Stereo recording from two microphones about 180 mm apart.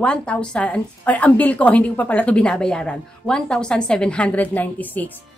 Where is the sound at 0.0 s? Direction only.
5° left (ahead or behind).